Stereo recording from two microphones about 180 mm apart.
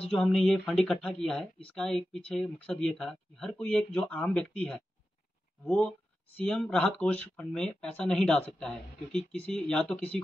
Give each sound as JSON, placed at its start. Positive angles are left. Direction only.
{"t": 0.1, "sound": "speech", "side_deg": 5}